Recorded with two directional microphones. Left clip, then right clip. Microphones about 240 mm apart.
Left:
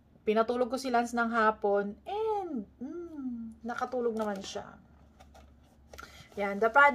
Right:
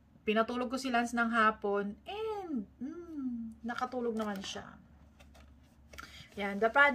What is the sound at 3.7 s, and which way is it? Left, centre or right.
Speech, centre.